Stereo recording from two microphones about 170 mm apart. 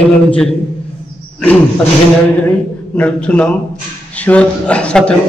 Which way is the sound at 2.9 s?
10° left (ahead or behind).